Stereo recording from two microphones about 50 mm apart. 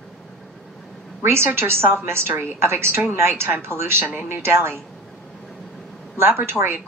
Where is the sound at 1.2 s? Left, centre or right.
Right.